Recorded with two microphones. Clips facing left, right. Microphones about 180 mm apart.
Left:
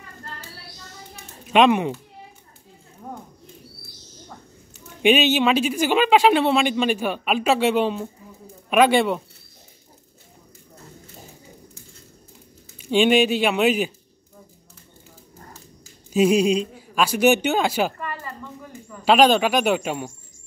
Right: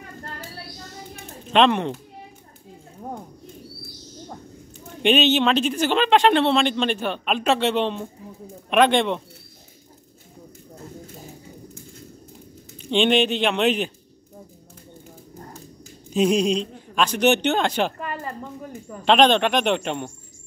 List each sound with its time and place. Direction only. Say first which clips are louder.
1.4 s speech: left 2 dB; 10° left (ahead or behind)
5.0 s speech: left 1 dB; 10° left (ahead or behind)
12.7 s speech: left 2 dB; 10° left (ahead or behind)
16.1 s a man's voice: left 2 dB; 5° left (ahead or behind)
18.2 s a sound: right 4 dB; 45° right (ahead or behind)
19.0 s speech: left 1 dB; 5° left (ahead or behind)